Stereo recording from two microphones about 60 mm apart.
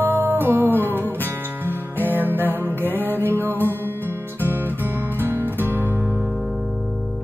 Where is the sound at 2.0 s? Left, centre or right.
Right.